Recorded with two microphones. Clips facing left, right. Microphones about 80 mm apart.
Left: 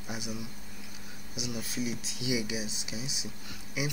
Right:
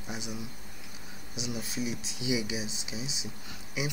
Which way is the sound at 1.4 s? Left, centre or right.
Centre.